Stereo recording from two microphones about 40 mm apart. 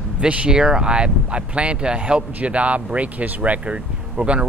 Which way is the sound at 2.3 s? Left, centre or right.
Right.